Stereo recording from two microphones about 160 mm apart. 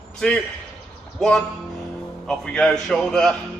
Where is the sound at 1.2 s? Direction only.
5° left (ahead or behind).